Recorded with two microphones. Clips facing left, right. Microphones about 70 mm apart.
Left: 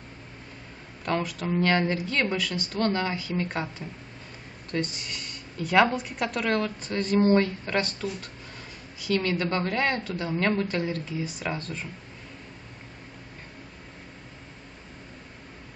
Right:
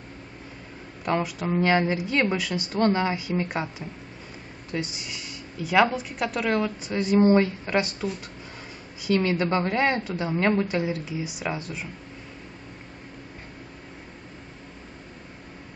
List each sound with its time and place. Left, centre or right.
1.0 s speech: centre